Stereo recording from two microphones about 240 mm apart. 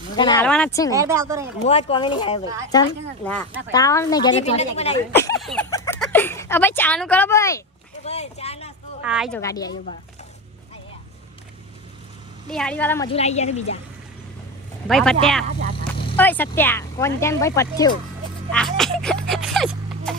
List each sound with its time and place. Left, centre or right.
0.1 s speech: centre
0.4 s speech: centre
0.9 s speech: centre
1.7 s speech: left
5.1 s speech: centre
5.4 s speech: centre
8.0 s a sound: left
9.0 s speech: centre
9.4 s speech: centre
12.4 s speech: centre
13.1 s speech: left
14.9 s speech: centre
16.2 s speech: centre
18.5 s a sound: centre